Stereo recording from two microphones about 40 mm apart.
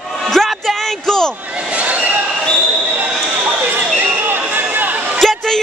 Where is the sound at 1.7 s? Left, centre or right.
Right.